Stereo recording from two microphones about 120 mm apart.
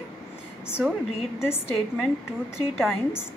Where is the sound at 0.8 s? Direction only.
10° right (ahead or behind).